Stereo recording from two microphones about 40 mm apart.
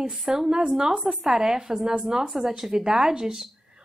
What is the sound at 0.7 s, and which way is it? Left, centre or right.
A woman's voice, centre.